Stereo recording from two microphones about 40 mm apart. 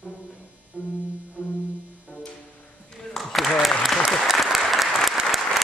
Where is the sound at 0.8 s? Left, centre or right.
Right.